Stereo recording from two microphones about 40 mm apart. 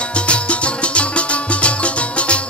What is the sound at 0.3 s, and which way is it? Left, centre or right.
Music, left.